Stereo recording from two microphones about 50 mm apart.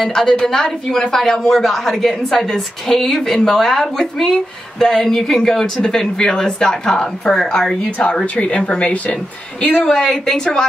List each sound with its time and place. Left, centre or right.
0.0 s speech: centre
8.4 s speech: left